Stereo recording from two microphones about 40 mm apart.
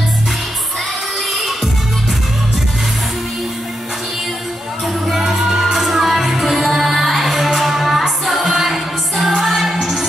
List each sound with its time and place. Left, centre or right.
5.1 s music: centre